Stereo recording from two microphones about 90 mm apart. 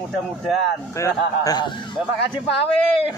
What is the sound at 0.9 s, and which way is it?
Speech, 35° left (ahead or behind).